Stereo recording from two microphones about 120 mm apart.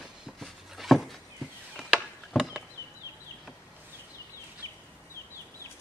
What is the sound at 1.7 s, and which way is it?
Chop, centre (ahead or behind).